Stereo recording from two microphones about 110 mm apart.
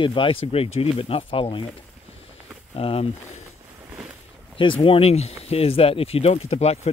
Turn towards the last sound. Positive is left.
turn(degrees=70)  # may be behind; listen again after turning